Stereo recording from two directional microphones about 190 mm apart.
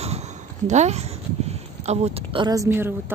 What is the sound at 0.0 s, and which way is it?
Speech, 35° right (ahead or behind).